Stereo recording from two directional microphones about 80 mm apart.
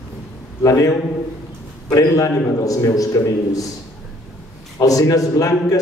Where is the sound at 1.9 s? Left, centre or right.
Left.